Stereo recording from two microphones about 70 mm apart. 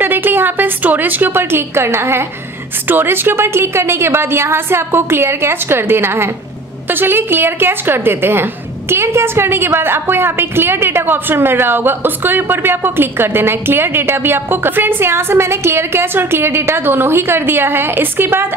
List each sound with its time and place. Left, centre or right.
0.0 s a woman's voice: right